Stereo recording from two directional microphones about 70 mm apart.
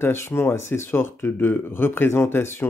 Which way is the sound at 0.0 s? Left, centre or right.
Left.